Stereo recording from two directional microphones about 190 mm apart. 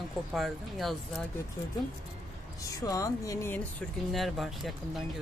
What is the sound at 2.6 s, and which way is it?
Speech, 20° left (ahead or behind).